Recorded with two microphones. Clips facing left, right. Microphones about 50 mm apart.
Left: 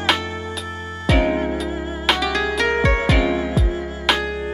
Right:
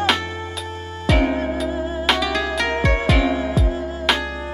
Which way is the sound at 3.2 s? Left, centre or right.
Left.